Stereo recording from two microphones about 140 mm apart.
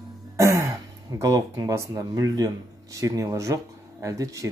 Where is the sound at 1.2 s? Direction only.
25° right (ahead or behind).